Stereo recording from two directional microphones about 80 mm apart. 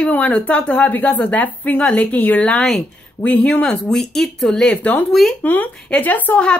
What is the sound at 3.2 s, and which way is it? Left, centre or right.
Speech, centre.